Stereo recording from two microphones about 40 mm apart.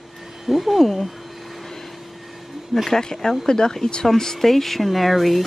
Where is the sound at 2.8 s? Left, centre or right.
Centre.